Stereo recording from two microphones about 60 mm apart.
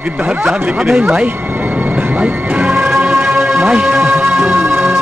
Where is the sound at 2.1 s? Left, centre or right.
Right.